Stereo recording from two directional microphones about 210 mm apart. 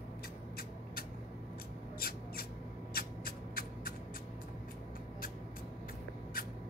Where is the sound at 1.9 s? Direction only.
45° left (ahead or behind).